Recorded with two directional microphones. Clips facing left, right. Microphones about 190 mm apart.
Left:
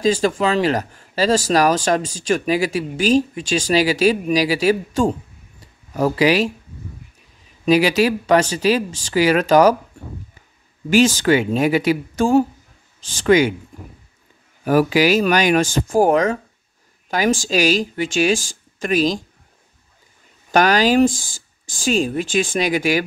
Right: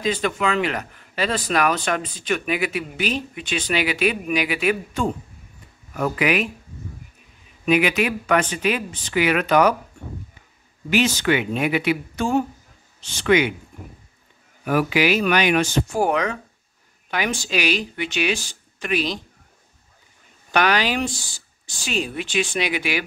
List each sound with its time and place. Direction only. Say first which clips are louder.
0.0 s speech: left 5 dB; 40° left (ahead or behind)
7.6 s speech: left 4 dB; 35° left (ahead or behind)
10.9 s speech: left 5 dB; 40° left (ahead or behind)
14.6 s speech: left 5 dB; 40° left (ahead or behind)
20.5 s speech: left 6 dB; 40° left (ahead or behind)